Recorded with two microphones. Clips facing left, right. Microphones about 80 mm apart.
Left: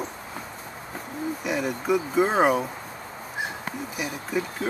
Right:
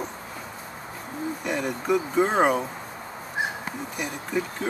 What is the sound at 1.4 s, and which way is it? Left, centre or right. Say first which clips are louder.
Vehicle: even; centre.